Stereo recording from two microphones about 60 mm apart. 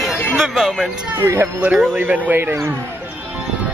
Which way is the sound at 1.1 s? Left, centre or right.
Right.